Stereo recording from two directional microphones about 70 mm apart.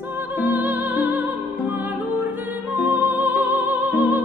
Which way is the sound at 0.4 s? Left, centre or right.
Right.